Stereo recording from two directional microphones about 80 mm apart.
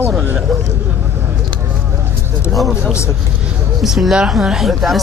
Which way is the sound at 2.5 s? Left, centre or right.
Centre.